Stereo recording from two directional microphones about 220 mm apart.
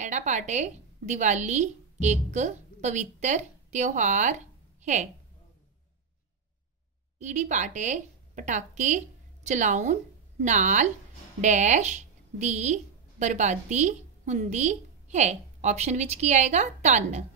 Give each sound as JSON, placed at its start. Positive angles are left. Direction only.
{"t": 0.0, "sound": "a woman's voice", "side_deg": -35}
{"t": 7.2, "sound": "a woman's voice", "side_deg": -35}